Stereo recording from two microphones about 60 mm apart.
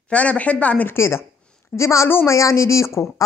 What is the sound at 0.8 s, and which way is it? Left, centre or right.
A woman's voice, left.